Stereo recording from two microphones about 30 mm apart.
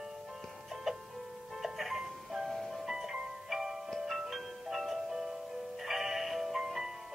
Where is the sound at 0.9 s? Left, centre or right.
Centre.